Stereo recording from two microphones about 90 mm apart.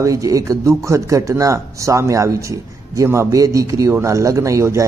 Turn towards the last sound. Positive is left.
turn(degrees=-35)  # may be behind; listen again after turning